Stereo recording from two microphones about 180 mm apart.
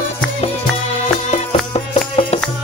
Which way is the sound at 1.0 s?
35° left (ahead or behind).